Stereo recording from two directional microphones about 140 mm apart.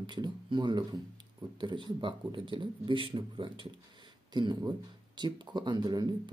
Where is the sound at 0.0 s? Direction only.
35° right (ahead or behind).